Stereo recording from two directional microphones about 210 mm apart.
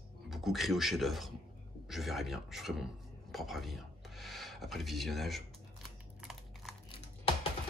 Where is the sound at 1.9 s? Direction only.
Centre (ahead or behind).